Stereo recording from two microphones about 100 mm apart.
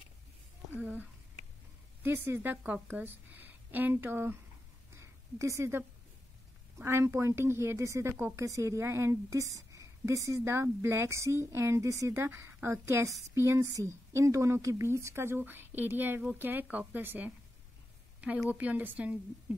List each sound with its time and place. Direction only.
0.7 s a woman's voice: 15° right (ahead or behind)
2.0 s a woman's voice: 20° right (ahead or behind)
4.9 s a sound: 30° right (ahead or behind)
6.8 s a woman's voice: 25° right (ahead or behind)